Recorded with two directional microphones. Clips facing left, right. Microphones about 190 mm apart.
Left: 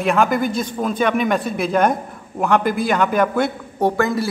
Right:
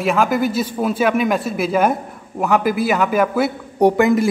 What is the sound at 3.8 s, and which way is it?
Speech, 15° right (ahead or behind).